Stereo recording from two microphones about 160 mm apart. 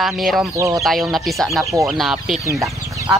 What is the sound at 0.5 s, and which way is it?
Speech, 20° right (ahead or behind).